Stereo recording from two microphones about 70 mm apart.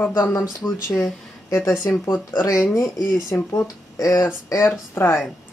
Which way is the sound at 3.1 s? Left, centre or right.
Left.